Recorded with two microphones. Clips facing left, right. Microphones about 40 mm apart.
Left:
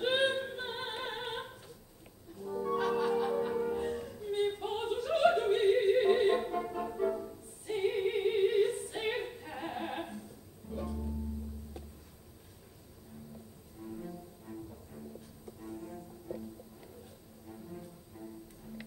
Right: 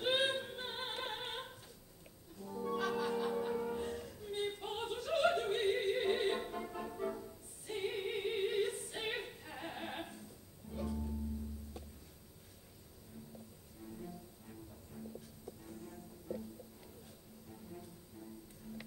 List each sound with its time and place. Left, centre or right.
0.0 s opera: centre
2.3 s music: centre
7.6 s opera: centre
10.7 s music: centre
13.8 s music: centre
17.5 s music: centre